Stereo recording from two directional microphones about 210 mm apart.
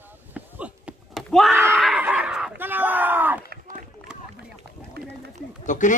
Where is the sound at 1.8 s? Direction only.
5° right (ahead or behind).